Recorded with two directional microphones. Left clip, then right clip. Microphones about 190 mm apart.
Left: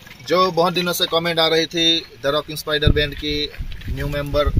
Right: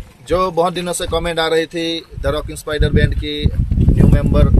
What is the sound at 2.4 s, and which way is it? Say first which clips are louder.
Speech: even; centre (ahead or behind).